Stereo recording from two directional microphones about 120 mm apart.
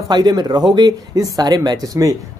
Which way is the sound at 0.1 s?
35° right (ahead or behind).